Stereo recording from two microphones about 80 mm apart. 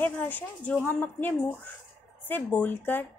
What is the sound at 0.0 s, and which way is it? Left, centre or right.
Speech, left.